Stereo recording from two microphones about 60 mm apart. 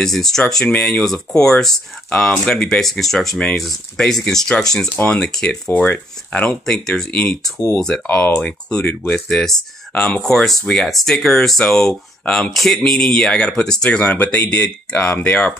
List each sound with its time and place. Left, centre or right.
0.0 s speech: centre
5.7 s speech: left
6.4 s speech: centre; by 15.5 s left